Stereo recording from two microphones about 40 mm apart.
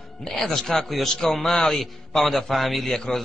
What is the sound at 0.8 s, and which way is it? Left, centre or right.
Speech, centre.